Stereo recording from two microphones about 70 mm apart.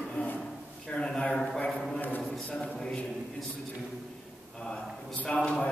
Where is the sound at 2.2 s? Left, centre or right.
Centre.